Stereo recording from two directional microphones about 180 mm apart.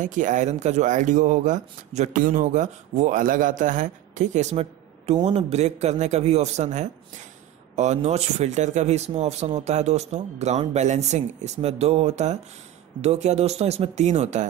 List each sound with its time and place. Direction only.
0.0 s speech: 45° right (ahead or behind)